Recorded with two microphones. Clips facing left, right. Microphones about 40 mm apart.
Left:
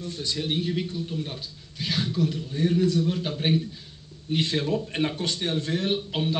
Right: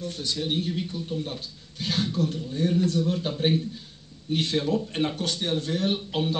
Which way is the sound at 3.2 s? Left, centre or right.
Centre.